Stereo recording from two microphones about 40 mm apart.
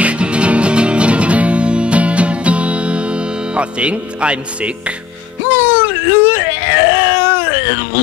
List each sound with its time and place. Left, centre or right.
0.0 s music: right
5.5 s music: right
6.3 s baby cry: right